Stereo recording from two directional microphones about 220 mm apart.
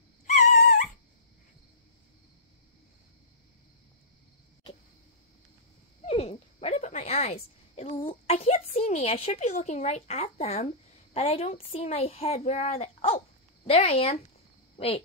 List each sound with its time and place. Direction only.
0.3 s dog: 35° left (ahead or behind)
6.0 s a child's voice: 30° left (ahead or behind)